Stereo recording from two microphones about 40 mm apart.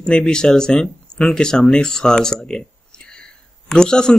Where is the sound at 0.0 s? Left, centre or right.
Centre.